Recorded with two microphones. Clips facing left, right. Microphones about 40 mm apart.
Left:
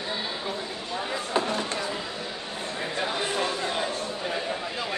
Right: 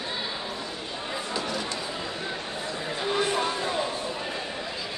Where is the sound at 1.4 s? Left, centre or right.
Left.